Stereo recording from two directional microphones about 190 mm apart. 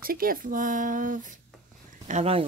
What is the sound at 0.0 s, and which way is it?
Speech, 50° right (ahead or behind).